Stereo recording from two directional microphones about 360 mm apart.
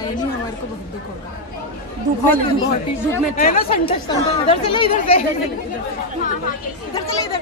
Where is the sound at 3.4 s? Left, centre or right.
Left.